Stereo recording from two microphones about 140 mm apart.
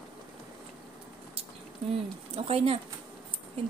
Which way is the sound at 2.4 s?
45° right (ahead or behind).